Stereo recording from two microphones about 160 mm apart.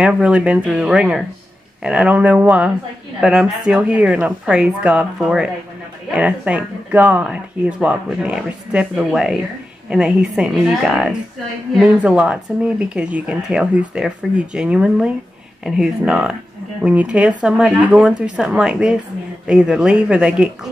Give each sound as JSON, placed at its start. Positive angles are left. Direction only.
{"t": 0.0, "sound": "speech", "side_deg": -5}